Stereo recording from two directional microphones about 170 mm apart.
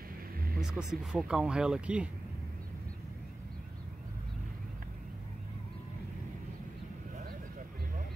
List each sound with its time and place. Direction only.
0.6 s speech: centre (ahead or behind)